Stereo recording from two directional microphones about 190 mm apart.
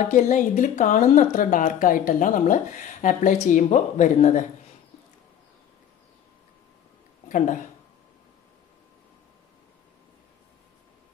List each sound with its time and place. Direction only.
0.1 s speech: 40° left (ahead or behind)
7.2 s speech: 45° left (ahead or behind)